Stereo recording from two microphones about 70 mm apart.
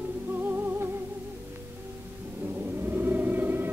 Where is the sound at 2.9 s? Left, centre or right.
Right.